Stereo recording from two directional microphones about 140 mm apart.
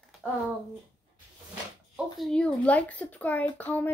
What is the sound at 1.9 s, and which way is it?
Speech, 5° left (ahead or behind).